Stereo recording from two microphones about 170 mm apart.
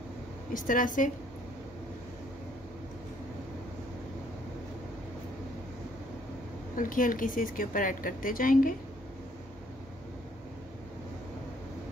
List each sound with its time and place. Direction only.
0.5 s speech: 55° left (ahead or behind)
6.8 s speech: 50° left (ahead or behind)